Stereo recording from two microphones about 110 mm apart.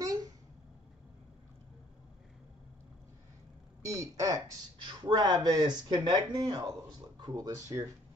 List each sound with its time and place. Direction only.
0.0 s a sound: 35° right (ahead or behind)
3.9 s speech: 30° right (ahead or behind)
4.8 s speech: 40° right (ahead or behind)